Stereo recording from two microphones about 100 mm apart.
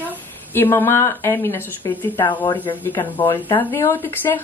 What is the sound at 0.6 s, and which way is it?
A woman's voice, 25° left (ahead or behind).